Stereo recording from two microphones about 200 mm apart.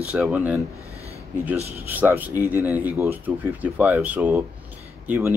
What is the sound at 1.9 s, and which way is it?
Speech, 10° right (ahead or behind).